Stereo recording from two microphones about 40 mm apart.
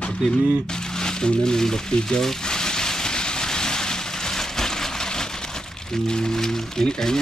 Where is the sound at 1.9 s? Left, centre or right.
Centre.